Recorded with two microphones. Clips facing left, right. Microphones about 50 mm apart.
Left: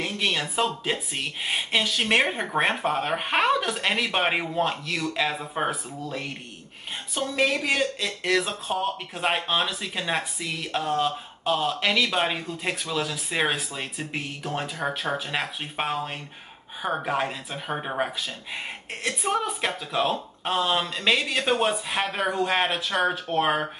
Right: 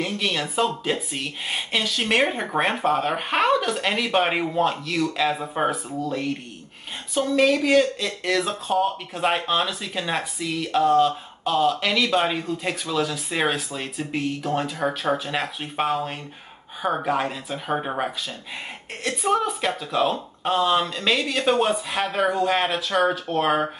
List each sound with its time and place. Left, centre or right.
0.0 s speech: centre
7.2 s speech: centre
14.8 s speech: right
15.1 s speech: centre